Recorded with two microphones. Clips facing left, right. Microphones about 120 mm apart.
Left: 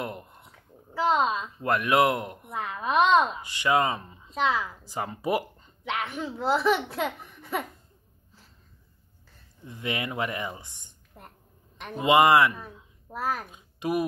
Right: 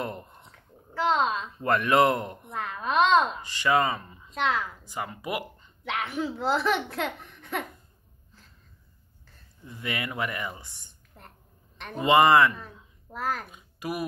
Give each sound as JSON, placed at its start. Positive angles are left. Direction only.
{"t": 0.0, "sound": "speech", "side_deg": 5}
{"t": 3.4, "sound": "a woman's voice", "side_deg": 15}
{"t": 4.4, "sound": "speech", "side_deg": 5}
{"t": 4.8, "sound": "speech", "side_deg": 30}
{"t": 5.9, "sound": "speech", "side_deg": 0}
{"t": 9.7, "sound": "a woman's voice", "side_deg": 20}
{"t": 13.5, "sound": "a child's voice", "side_deg": 25}